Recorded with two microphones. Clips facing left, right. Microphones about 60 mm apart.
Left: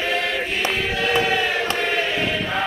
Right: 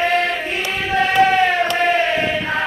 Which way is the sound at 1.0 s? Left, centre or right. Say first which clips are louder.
Right 8 dB; right.